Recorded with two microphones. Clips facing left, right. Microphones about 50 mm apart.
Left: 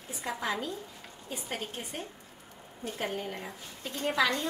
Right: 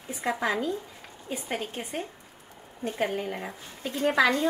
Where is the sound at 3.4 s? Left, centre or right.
Centre.